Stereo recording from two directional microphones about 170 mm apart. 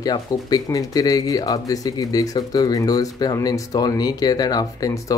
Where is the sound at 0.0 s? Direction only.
25° left (ahead or behind).